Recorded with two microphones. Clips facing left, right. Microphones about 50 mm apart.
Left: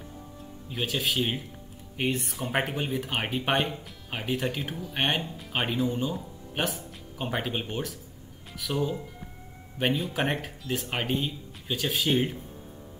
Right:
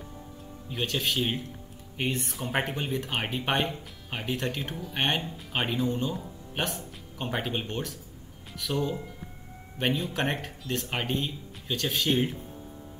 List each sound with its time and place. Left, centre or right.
0.7 s speech: centre